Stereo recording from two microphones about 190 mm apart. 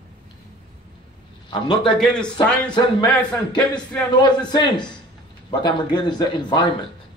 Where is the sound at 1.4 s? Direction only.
25° left (ahead or behind).